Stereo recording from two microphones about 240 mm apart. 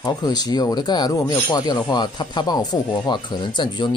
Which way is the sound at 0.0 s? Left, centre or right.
Centre.